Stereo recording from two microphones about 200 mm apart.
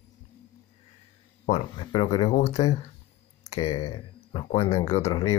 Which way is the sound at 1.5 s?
25° left (ahead or behind).